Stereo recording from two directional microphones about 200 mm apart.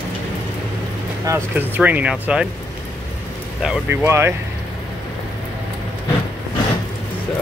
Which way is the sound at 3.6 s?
5° right (ahead or behind).